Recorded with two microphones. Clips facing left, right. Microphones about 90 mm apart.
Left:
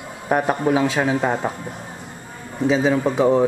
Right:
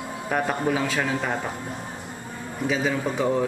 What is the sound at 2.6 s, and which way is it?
Speech, 30° left (ahead or behind).